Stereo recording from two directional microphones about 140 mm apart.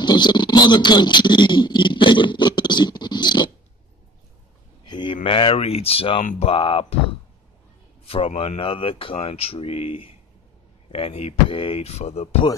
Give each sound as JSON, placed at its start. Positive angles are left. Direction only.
{"t": 0.0, "sound": "speech", "side_deg": 30}
{"t": 4.8, "sound": "speech", "side_deg": 35}
{"t": 8.4, "sound": "speech", "side_deg": 40}